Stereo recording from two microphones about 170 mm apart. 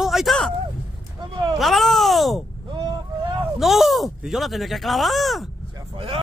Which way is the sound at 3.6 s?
Centre (ahead or behind).